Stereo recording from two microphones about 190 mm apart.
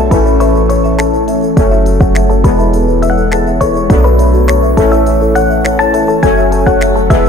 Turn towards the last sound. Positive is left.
turn(degrees=0)  # may be behind; listen again after turning